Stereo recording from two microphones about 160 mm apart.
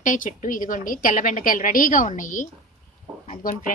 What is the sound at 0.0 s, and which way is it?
A woman's voice, 55° left (ahead or behind).